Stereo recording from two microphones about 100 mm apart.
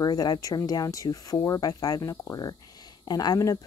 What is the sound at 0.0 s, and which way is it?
A woman's voice, 40° left (ahead or behind).